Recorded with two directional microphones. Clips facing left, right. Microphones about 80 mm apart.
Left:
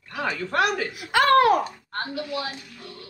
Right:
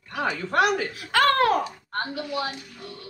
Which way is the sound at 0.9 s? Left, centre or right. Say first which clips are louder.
Left 2 dB; centre.